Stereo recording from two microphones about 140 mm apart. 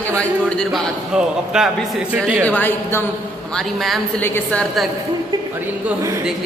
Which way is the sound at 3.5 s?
Centre (ahead or behind).